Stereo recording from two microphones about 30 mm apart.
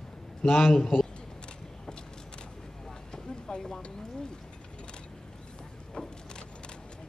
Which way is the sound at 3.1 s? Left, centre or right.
Left.